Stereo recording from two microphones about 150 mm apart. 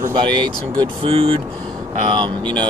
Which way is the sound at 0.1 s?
30° right (ahead or behind).